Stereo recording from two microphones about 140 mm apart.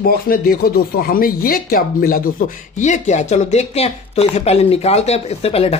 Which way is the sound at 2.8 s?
55° left (ahead or behind).